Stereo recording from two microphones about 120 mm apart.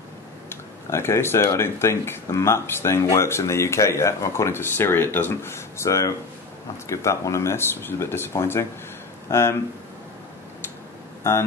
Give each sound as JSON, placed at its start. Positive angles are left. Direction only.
{"t": 0.5, "sound": "speech", "side_deg": 20}